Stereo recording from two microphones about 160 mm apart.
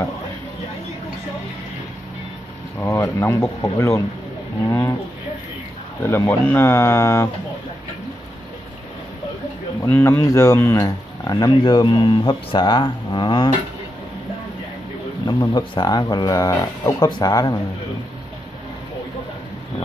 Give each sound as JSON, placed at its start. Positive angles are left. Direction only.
{"t": 2.8, "sound": "speech", "side_deg": 15}
{"t": 6.0, "sound": "speech", "side_deg": 15}
{"t": 9.8, "sound": "speech", "side_deg": 10}
{"t": 15.2, "sound": "speech", "side_deg": 25}